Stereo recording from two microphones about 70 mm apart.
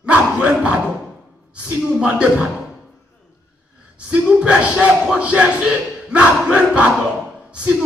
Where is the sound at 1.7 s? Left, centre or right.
Centre.